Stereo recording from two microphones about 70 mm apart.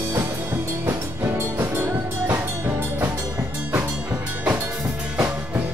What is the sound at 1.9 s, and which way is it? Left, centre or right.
Music, right.